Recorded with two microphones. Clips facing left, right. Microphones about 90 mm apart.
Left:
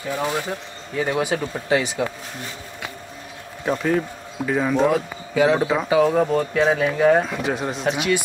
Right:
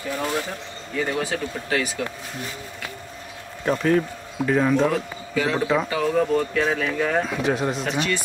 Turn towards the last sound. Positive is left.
turn(degrees=0)  # may be behind; listen again after turning